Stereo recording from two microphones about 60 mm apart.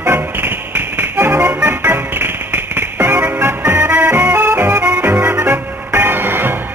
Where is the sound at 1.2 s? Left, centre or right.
Right.